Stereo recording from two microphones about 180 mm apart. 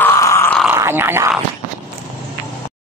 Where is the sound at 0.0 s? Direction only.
15° left (ahead or behind).